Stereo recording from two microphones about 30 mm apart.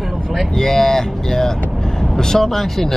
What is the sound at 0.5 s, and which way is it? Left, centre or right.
Speech, centre.